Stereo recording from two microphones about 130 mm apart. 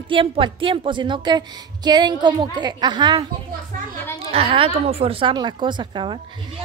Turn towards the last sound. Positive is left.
turn(degrees=-40)  # may be behind; listen again after turning